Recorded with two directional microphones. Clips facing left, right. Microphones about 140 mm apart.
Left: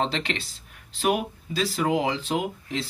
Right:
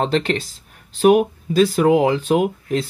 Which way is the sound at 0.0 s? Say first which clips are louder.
Right 8 dB; 45° right (ahead or behind).